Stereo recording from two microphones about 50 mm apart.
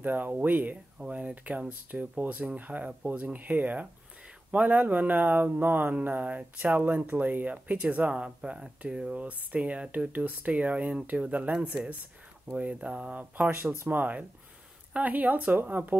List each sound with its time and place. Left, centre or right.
0.0 s speech: right
0.9 s speech: right
9.2 s speech: right
11.5 s speech: centre
12.5 s speech: right